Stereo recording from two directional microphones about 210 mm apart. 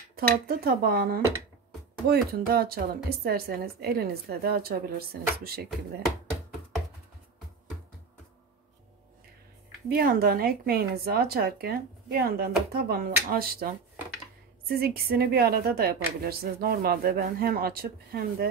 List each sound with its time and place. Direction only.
0.1 s a woman's voice: 45° right (ahead or behind)
9.8 s a woman's voice: 45° right (ahead or behind)